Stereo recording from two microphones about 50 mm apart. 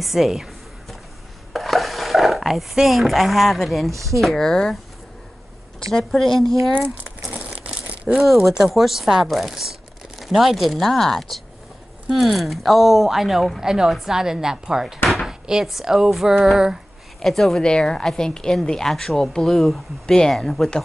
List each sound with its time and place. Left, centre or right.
0.0 s a sound: centre
1.5 s a woman's voice: centre
5.9 s speech: centre
7.2 s crumpling: right
8.5 s speech: centre
15.2 s a sound: centre
15.6 s speech: centre
17.2 s speech: centre
17.6 s a woman's voice: centre